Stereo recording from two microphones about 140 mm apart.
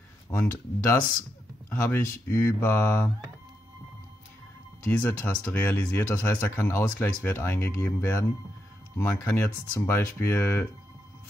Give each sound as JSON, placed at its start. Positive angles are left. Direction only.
{"t": 0.3, "sound": "speech", "side_deg": 15}
{"t": 4.8, "sound": "speech", "side_deg": 10}